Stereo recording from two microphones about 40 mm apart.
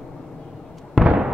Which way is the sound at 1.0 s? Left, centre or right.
Centre.